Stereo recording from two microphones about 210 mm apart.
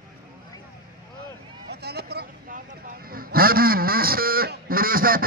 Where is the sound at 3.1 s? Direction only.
45° right (ahead or behind).